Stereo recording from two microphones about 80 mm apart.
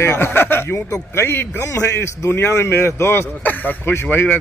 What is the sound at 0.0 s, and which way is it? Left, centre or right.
A man's voice, left.